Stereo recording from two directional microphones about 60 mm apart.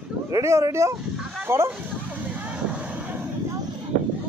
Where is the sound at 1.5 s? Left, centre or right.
Right.